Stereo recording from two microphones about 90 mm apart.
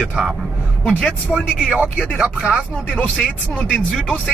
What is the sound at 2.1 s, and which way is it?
Speech, 15° right (ahead or behind).